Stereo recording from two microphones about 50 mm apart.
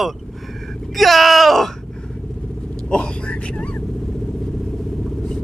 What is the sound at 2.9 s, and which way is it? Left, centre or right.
Vehicle, centre.